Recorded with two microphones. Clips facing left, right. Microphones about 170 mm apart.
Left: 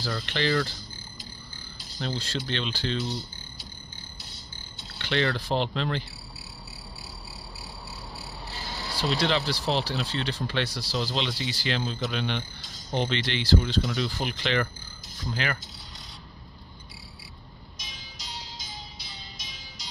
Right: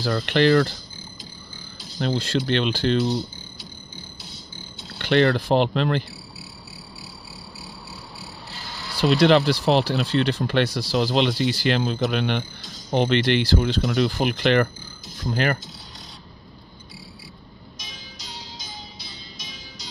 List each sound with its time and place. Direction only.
0.0 s speech: 60° right (ahead or behind)
2.0 s speech: 65° right (ahead or behind); by 3.3 s 80° right
4.9 s speech: 55° right (ahead or behind)
9.0 s speech: 65° right (ahead or behind); by 15.6 s 50° right (ahead or behind)